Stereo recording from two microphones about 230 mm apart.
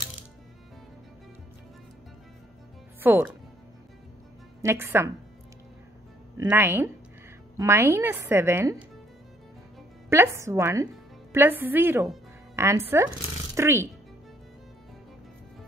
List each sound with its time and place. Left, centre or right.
3.0 s speech: centre
4.6 s a woman's voice: centre
6.3 s a woman's voice: centre
10.0 s a woman's voice: centre